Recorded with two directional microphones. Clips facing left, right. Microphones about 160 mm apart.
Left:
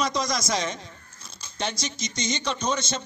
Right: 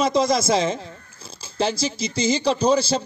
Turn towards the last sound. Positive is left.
turn(degrees=-30)  # may be behind; listen again after turning